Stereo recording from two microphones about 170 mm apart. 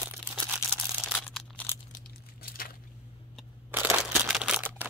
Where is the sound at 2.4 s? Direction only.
60° left (ahead or behind).